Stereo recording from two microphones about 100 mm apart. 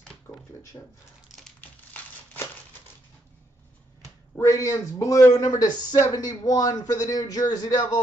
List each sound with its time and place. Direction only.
0.7 s a man's voice: 30° left (ahead or behind)
1.3 s crumpling: 5° right (ahead or behind)
4.4 s a man's voice: 30° left (ahead or behind)